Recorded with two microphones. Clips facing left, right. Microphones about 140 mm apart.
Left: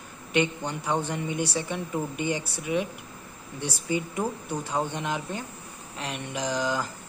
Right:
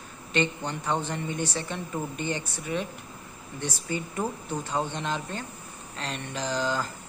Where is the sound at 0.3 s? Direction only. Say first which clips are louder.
Left 2 dB; 10° left (ahead or behind).